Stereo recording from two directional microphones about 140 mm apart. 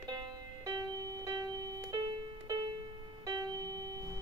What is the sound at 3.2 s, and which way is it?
Music, 25° right (ahead or behind).